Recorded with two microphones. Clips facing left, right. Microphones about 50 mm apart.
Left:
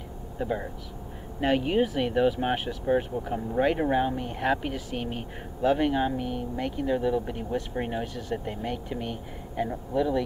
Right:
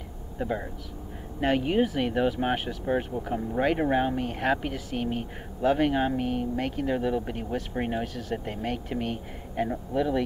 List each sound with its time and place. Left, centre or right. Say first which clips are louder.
0.4 s speech: even; centre
3.9 s speech: even; centre
4.4 s speech: left 1 dB; centre
4.6 s speech: right 1 dB; centre
5.6 s speech: even; centre
5.9 s speech: right 1 dB; right
6.6 s speech: left 4 dB; centre